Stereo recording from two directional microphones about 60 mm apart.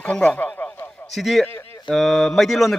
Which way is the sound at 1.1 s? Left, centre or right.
Centre.